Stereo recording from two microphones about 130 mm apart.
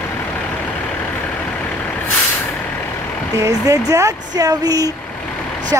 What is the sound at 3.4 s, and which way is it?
Speech, 25° right (ahead or behind).